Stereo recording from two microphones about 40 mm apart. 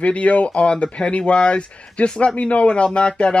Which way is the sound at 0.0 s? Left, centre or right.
Left.